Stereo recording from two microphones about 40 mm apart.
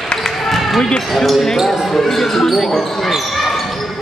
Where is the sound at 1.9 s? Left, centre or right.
Centre.